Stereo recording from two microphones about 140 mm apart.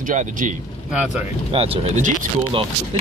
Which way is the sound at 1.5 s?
40° right (ahead or behind).